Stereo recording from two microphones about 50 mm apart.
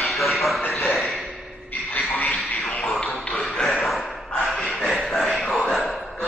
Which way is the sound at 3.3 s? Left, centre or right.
Centre.